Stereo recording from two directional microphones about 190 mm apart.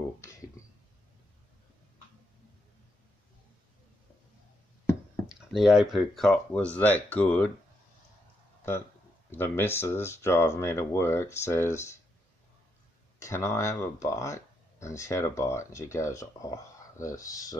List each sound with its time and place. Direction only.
5.5 s speech: centre (ahead or behind)
9.3 s speech: 10° left (ahead or behind)
13.2 s speech: 15° left (ahead or behind)